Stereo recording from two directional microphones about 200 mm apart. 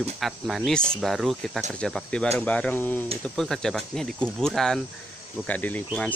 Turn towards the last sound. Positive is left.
turn(degrees=5)  # may be behind; listen again after turning